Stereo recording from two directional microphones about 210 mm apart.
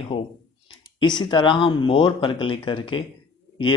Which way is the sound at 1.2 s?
20° left (ahead or behind).